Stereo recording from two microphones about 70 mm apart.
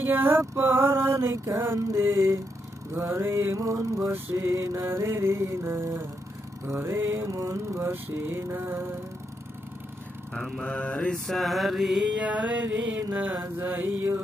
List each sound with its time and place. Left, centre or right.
0.0 s male singing: right
1.9 s mantra: right
4.1 s male singing: right
4.5 s male singing: right
10.6 s mantra: centre
11.2 s mantra: centre
12.2 s music: centre